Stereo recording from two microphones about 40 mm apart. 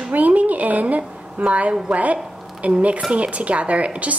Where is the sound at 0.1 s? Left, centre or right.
Right.